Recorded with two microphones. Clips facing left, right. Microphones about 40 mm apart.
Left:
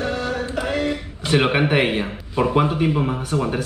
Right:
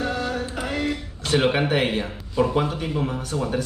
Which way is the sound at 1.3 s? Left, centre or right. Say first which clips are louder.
Left 3 dB; left.